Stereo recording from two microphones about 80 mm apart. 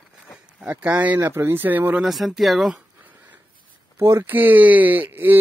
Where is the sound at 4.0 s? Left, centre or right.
Right.